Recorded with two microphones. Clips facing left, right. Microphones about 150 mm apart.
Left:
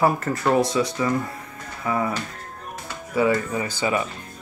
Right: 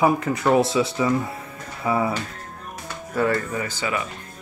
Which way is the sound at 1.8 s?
10° right (ahead or behind).